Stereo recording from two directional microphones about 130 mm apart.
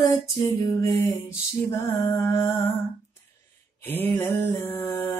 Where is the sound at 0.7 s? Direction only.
30° left (ahead or behind).